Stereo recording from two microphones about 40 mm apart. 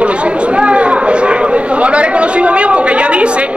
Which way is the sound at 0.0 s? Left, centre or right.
Right.